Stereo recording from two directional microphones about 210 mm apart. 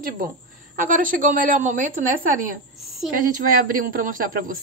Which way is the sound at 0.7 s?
40° right (ahead or behind).